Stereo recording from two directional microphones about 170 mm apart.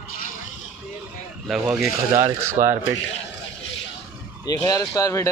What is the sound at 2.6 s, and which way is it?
Speech, 50° right (ahead or behind).